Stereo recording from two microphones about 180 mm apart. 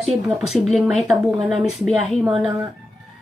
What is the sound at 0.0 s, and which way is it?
Speech, centre (ahead or behind).